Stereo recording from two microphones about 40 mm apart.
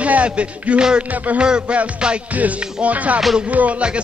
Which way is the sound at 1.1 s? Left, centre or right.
Right.